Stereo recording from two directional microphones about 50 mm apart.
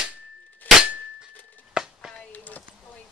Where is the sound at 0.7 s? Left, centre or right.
Left.